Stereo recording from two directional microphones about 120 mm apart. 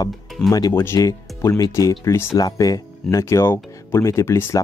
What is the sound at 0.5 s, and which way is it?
Speech, 30° left (ahead or behind).